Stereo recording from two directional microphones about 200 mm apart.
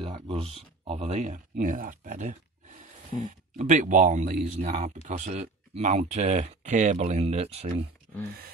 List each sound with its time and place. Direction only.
0.0 s speech: 25° right (ahead or behind)